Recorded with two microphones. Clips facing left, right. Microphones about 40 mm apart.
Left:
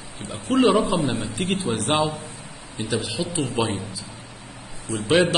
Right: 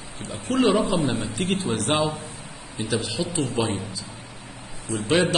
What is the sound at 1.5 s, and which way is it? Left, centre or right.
A man's voice, centre.